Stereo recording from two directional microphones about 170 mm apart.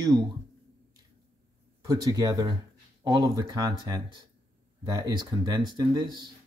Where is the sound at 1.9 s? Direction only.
20° right (ahead or behind).